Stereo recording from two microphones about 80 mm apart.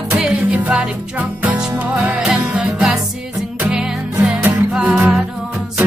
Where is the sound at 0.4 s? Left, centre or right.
Centre.